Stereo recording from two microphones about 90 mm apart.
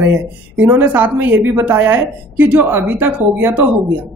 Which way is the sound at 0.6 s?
20° right (ahead or behind).